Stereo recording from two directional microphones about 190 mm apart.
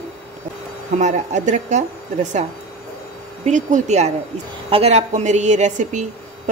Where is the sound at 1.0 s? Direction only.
40° right (ahead or behind).